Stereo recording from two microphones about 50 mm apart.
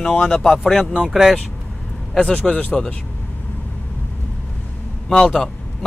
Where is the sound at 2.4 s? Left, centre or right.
Left.